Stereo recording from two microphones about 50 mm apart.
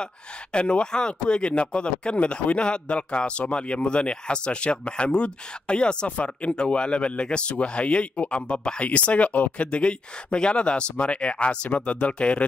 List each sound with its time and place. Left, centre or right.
0.0 s speech: left